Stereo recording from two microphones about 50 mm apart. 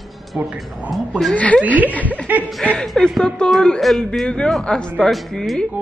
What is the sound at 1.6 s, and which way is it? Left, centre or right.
Speech, right.